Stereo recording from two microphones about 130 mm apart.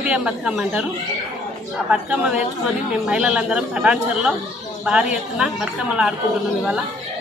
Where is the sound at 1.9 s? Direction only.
10° right (ahead or behind).